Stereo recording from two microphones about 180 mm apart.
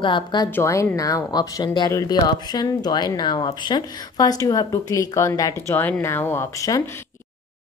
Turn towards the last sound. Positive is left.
turn(degrees=20)  # may be behind; listen again after turning